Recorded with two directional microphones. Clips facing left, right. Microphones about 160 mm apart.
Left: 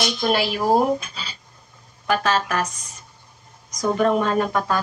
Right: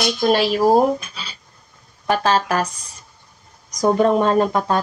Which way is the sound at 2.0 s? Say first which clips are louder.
Right 3 dB; 30° right (ahead or behind).